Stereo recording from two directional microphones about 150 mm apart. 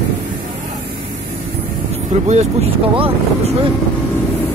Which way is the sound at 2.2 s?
50° right (ahead or behind).